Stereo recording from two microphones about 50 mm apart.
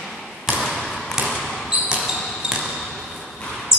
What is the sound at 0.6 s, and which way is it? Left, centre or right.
Basketball bounce, centre.